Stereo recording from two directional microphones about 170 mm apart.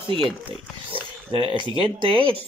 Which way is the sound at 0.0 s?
30° right (ahead or behind).